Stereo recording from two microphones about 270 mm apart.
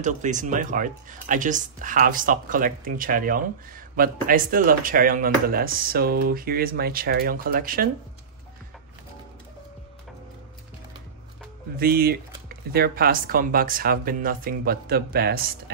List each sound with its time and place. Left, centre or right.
0.0 s speech: right
11.7 s speech: right